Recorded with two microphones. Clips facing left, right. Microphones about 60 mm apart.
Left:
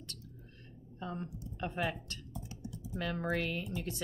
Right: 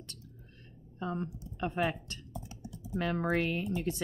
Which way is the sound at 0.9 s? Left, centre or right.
Centre.